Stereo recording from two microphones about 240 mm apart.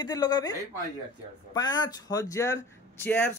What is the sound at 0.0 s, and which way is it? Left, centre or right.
Speech, centre.